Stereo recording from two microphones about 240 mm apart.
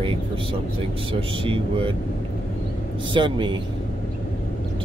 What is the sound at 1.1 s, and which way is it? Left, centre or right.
Speech, right.